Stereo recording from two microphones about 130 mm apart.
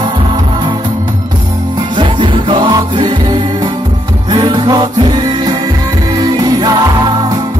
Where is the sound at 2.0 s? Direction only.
40° right (ahead or behind).